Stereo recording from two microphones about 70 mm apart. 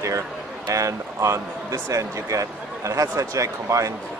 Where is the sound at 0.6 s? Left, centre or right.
Right.